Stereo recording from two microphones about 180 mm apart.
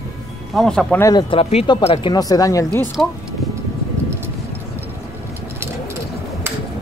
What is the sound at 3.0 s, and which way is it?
Speech, 5° left (ahead or behind).